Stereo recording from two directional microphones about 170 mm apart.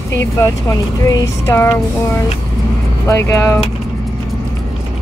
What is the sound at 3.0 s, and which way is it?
Speech, 15° left (ahead or behind).